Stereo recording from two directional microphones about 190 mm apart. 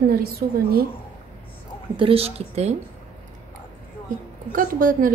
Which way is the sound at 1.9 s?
30° right (ahead or behind).